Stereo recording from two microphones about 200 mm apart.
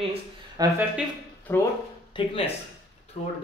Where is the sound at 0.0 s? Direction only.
30° right (ahead or behind).